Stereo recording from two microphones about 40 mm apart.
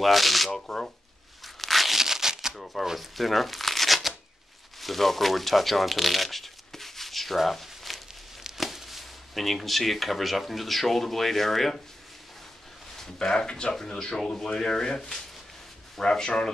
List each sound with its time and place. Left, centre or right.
0.0 s speech: centre
1.4 s a sound: centre
2.5 s shuffling cards: centre
4.7 s speech: centre
12.9 s a sound: centre
13.5 s speech: left